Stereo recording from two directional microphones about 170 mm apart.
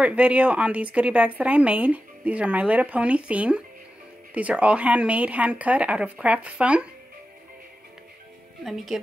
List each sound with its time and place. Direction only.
0.0 s speech: 5° right (ahead or behind)
8.6 s a woman's voice: centre (ahead or behind)